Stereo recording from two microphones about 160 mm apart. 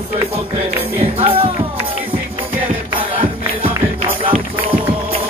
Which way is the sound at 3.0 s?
35° right (ahead or behind).